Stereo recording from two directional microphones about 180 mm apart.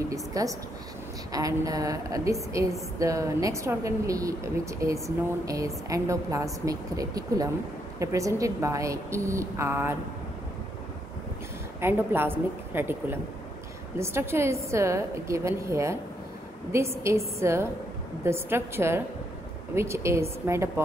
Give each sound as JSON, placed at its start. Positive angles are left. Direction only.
{"t": 0.1, "sound": "a woman's voice", "side_deg": -20}
{"t": 11.8, "sound": "speech", "side_deg": -10}